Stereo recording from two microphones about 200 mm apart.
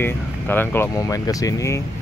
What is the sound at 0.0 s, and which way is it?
Speech, 10° left (ahead or behind).